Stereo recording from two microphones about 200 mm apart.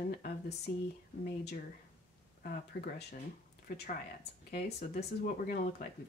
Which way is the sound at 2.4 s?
50° left (ahead or behind).